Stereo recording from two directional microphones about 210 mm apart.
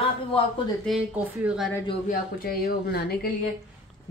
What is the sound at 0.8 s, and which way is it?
Speech, 5° right (ahead or behind).